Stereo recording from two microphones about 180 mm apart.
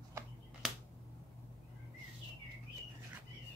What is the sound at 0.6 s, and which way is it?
Finger snapping, centre (ahead or behind).